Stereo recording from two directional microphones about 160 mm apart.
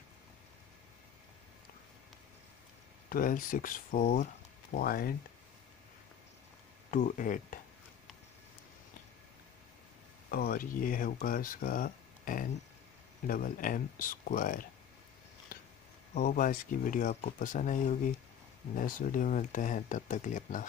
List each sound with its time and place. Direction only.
3.1 s speech: 60° left (ahead or behind)
6.9 s speech: 55° left (ahead or behind)
10.3 s speech: 65° left (ahead or behind)
15.5 s a sound: 65° left (ahead or behind)
16.2 s speech: 55° left (ahead or behind)